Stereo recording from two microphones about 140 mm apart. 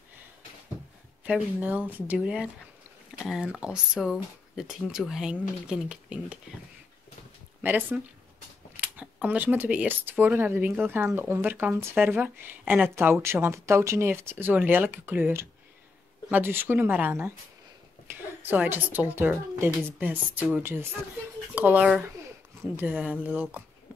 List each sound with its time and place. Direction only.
1.2 s speech: 10° right (ahead or behind)
7.6 s speech: 15° right (ahead or behind)